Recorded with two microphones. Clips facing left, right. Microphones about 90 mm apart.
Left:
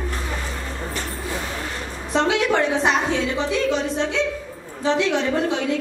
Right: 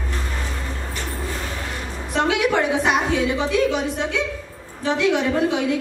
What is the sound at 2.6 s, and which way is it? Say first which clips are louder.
A woman's voice: even; 15° right (ahead or behind).